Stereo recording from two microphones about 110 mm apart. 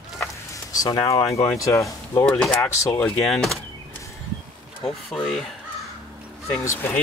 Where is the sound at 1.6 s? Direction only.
30° left (ahead or behind).